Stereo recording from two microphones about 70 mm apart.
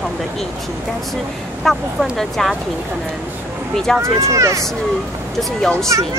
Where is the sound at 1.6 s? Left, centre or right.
Centre.